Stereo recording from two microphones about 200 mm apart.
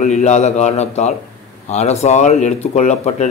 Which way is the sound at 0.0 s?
35° left (ahead or behind).